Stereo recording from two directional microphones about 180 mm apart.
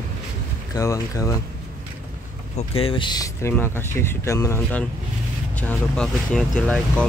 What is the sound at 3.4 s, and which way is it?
Speech, 15° left (ahead or behind).